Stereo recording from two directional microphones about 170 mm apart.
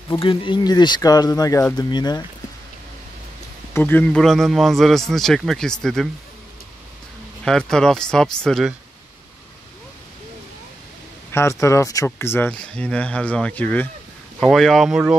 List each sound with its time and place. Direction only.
0.2 s speech: 30° left (ahead or behind)
3.7 s a man's voice: 10° left (ahead or behind)
7.4 s a man's voice: 5° left (ahead or behind)
11.3 s a man's voice: 15° left (ahead or behind); by 15.1 s 5° right (ahead or behind)